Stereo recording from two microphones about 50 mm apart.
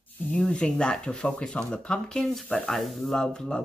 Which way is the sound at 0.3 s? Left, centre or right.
Centre.